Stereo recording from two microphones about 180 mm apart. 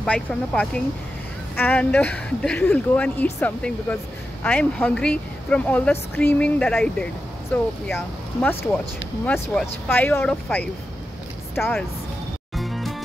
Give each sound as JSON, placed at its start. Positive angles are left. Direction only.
{"t": 0.0, "sound": "speech", "side_deg": 5}
{"t": 12.5, "sound": "music", "side_deg": 0}